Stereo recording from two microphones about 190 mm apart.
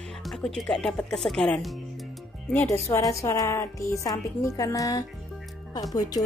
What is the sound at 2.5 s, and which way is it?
Speech, 15° left (ahead or behind).